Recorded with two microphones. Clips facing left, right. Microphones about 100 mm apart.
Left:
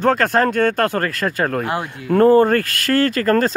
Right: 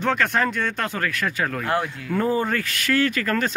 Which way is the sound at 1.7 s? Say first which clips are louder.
Even; 20° left (ahead or behind).